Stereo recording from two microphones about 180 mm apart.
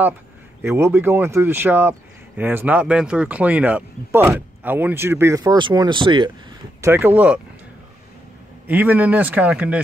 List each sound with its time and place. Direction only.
0.6 s speech: 15° right (ahead or behind)
6.8 s speech: 10° right (ahead or behind)
8.6 s speech: 10° right (ahead or behind)